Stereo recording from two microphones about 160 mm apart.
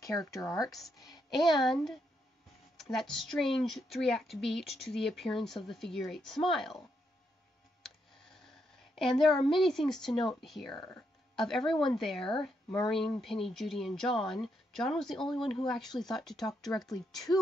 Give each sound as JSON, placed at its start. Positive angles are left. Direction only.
{"t": 0.0, "sound": "speech", "side_deg": 20}
{"t": 1.4, "sound": "a woman's voice", "side_deg": 0}
{"t": 8.9, "sound": "a woman's voice", "side_deg": 0}
{"t": 17.3, "sound": "speech", "side_deg": 20}